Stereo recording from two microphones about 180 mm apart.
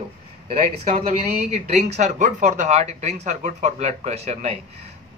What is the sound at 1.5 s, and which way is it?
Speech, 40° right (ahead or behind).